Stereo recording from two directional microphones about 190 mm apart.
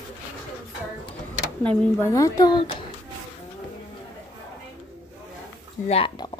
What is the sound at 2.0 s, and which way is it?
Speech, 15° left (ahead or behind).